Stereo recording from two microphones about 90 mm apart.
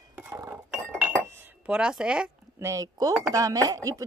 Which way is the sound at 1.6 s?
10° right (ahead or behind).